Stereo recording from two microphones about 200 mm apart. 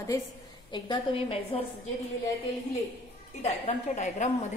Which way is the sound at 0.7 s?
25° left (ahead or behind).